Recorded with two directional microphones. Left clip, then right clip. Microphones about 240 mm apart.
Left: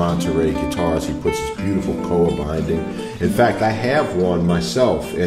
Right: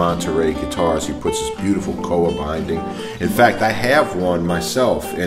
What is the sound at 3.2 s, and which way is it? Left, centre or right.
Speech, right.